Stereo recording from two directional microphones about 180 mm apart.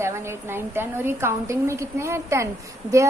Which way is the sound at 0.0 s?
15° right (ahead or behind).